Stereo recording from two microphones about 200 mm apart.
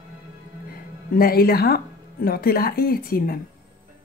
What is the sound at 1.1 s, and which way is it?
Speech, 50° left (ahead or behind).